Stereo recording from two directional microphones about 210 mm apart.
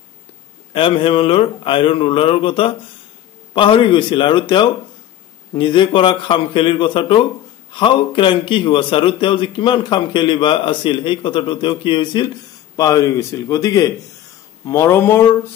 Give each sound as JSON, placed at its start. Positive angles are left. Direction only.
{"t": 0.7, "sound": "speech", "side_deg": 25}